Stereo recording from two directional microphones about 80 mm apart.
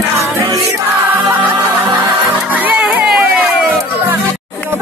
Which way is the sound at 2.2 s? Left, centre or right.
Right.